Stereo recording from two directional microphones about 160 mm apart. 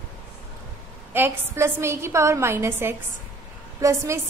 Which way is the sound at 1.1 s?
15° right (ahead or behind).